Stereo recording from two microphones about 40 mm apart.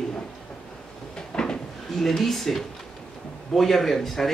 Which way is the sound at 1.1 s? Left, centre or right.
Centre.